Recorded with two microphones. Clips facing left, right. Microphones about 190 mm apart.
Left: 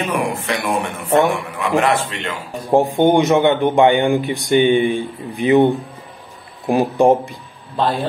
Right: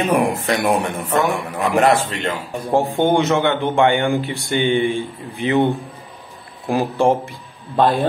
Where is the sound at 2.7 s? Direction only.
15° left (ahead or behind).